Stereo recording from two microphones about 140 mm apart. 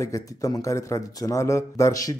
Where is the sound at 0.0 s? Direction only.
25° left (ahead or behind).